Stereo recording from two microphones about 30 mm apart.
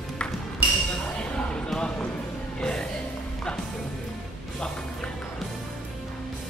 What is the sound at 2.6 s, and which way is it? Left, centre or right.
Music, left.